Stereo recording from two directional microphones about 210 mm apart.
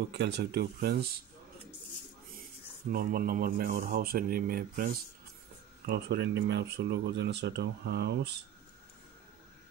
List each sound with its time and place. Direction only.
0.1 s speech: 50° right (ahead or behind)
2.9 s speech: 45° right (ahead or behind)